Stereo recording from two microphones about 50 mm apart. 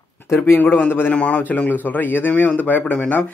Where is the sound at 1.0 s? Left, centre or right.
Left.